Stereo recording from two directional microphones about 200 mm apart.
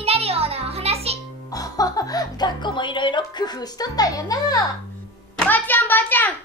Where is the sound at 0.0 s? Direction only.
30° right (ahead or behind).